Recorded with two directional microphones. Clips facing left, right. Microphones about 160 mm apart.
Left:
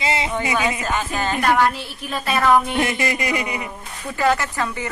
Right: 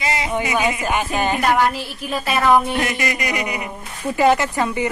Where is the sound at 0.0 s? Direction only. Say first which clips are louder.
Left 1 dB; 25° left (ahead or behind).